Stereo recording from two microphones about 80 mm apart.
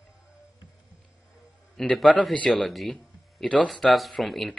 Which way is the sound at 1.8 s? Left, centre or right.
Centre.